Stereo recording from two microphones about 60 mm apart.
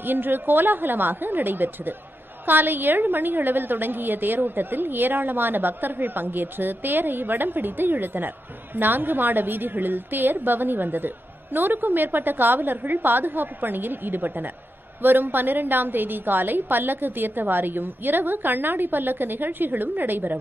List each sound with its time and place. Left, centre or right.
0.0 s a woman's voice: right